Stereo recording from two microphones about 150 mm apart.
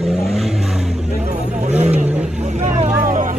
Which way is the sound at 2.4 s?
50° right (ahead or behind).